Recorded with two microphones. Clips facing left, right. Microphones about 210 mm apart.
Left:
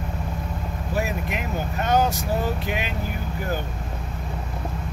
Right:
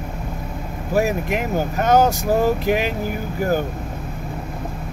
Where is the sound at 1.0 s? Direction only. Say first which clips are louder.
Right 8 dB; 50° right (ahead or behind).